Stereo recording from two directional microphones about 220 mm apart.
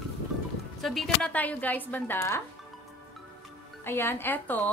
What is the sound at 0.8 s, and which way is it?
Speech, centre (ahead or behind).